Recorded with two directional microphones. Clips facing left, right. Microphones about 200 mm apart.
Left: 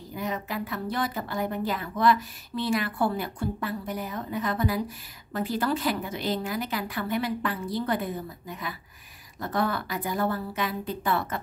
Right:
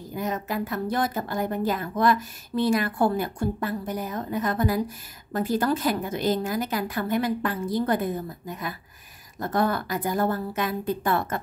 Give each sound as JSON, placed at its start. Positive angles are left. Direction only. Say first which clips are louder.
{"t": 0.1, "sound": "a woman's voice", "louder": "right 3 dB", "side_deg": -45}